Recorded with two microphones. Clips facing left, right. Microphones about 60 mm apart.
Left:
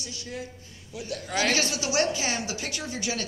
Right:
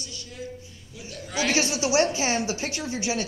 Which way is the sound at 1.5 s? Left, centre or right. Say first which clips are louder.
Right 3 dB; right.